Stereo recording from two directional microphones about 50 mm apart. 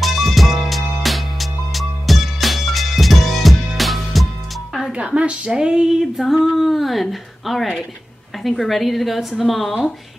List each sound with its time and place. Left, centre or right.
0.0 s music: centre
4.9 s a sound: right; by 7.7 s centre
8.5 s speech: centre